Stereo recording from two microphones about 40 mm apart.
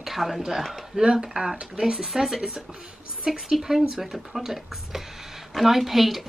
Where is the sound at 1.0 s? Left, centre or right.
Centre.